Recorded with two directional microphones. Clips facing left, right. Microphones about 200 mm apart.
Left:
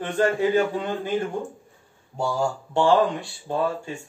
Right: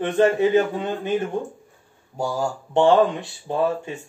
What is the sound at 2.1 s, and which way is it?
Speech, 10° right (ahead or behind).